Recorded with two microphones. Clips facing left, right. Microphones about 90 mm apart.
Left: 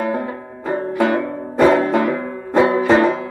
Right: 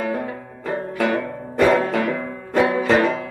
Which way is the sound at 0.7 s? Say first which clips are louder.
Left 4 dB; 25° left (ahead or behind).